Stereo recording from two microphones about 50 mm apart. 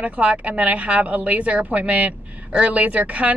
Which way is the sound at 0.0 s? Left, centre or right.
Right.